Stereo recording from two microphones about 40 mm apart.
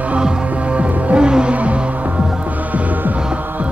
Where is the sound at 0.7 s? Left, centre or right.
Right.